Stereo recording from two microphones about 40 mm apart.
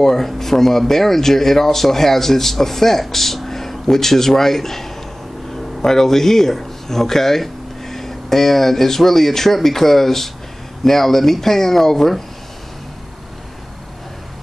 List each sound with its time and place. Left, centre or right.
0.0 s speech: centre